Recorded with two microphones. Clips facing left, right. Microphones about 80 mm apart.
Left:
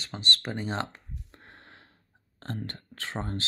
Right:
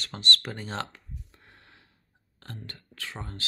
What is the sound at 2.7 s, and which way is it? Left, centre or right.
Speech, left.